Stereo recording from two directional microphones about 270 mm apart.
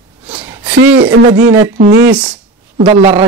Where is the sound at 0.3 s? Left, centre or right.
Centre.